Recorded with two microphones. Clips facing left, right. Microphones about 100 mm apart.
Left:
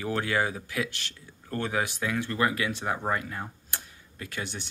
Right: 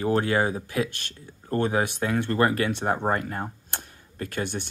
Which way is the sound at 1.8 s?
45° right (ahead or behind).